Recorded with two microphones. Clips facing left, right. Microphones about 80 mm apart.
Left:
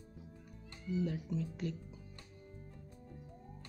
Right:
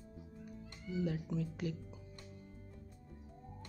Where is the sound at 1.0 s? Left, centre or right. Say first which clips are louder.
Right 1 dB; centre.